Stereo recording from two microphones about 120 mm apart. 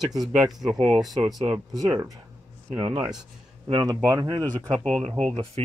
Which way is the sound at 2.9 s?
5° right (ahead or behind).